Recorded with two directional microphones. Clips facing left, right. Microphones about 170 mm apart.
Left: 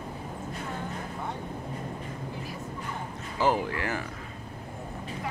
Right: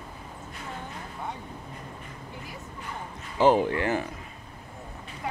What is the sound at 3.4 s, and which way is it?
Speech, 25° right (ahead or behind).